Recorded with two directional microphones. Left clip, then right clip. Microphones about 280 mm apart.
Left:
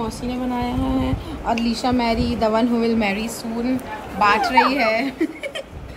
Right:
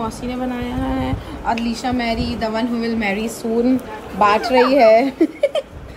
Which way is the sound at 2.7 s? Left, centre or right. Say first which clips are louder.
Left 1 dB; left.